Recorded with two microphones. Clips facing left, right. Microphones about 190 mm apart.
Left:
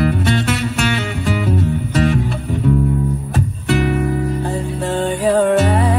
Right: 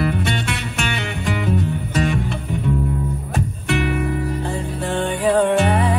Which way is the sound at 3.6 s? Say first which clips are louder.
Left 4 dB; 40° left (ahead or behind).